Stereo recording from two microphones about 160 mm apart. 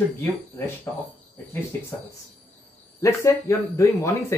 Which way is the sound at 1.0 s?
15° left (ahead or behind).